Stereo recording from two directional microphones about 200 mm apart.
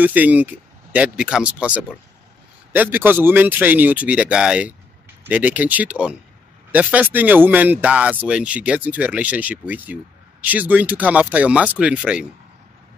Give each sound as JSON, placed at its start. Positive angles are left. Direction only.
{"t": 0.0, "sound": "speech", "side_deg": -10}